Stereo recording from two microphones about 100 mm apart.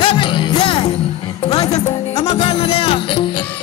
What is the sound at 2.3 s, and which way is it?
Music, 70° left (ahead or behind).